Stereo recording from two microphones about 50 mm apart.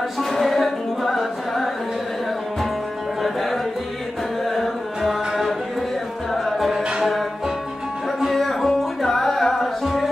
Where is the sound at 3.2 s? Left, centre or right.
Centre.